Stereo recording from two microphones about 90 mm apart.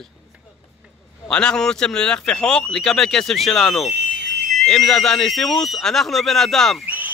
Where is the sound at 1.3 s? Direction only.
10° left (ahead or behind).